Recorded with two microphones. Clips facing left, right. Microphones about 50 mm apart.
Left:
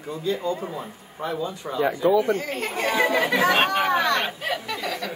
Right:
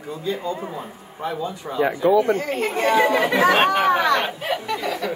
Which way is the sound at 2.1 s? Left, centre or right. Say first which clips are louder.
Right 3 dB; centre.